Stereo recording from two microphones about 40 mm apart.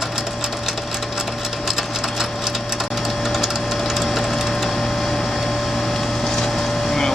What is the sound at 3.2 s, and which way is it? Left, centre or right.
Sewing machine, centre.